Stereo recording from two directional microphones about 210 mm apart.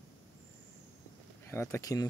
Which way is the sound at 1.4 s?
10° left (ahead or behind).